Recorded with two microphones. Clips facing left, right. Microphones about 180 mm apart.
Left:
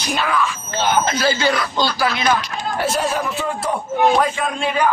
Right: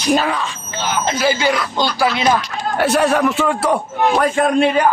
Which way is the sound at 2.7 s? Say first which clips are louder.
Right 6 dB; 65° right (ahead or behind).